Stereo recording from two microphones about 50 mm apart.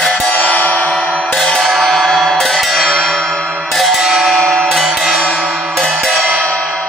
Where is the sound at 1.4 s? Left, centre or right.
Centre.